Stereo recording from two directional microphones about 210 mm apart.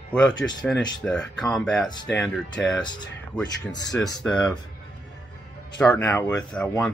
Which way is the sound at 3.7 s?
20° left (ahead or behind).